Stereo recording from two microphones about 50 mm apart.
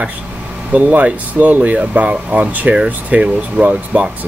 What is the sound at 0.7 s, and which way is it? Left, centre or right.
Speech, right.